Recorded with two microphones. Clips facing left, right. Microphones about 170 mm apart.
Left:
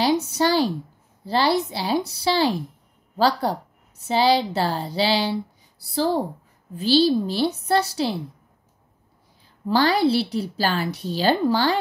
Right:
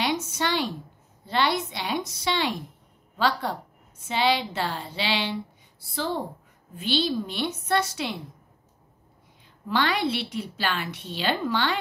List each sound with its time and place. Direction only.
0.0 s a sound: 35° left (ahead or behind)
1.2 s a woman's voice: 35° left (ahead or behind)
9.7 s a woman's voice: 35° left (ahead or behind)